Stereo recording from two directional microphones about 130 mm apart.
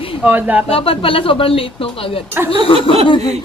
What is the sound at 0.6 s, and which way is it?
Speech, 45° left (ahead or behind).